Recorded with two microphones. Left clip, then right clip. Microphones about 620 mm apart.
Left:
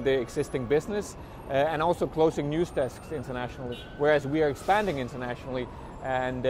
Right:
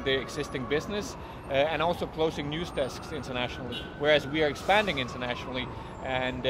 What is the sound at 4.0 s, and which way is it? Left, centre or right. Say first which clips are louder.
Speech: left 1 dB; left.